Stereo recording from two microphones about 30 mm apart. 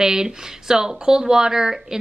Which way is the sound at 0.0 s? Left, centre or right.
Right.